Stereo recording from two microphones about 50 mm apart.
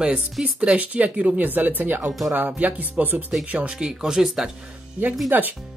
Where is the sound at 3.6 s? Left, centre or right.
Centre.